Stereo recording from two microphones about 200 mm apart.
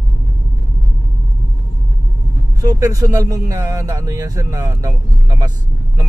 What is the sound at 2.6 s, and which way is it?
Speech, 15° right (ahead or behind).